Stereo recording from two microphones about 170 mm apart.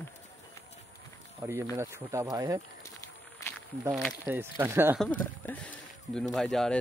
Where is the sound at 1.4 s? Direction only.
15° right (ahead or behind).